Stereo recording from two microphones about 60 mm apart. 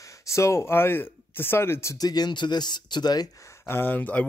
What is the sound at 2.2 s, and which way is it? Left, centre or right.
Speech, left.